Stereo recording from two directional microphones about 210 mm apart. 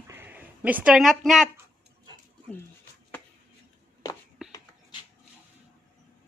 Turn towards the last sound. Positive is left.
turn(degrees=0)  # may be behind; listen again after turning